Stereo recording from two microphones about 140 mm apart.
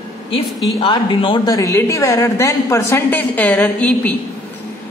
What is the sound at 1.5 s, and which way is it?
A woman's voice, 25° left (ahead or behind).